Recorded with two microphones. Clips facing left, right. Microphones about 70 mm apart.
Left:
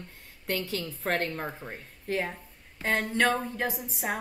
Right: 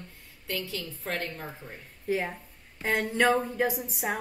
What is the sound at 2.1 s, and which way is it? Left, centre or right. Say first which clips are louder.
Speech: right 1 dB; centre.